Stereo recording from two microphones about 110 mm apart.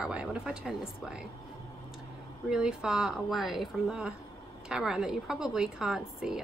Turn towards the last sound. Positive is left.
turn(degrees=-5)  # may be behind; listen again after turning